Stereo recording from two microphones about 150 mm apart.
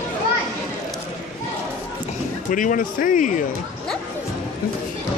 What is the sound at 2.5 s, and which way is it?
Speech, 60° left (ahead or behind).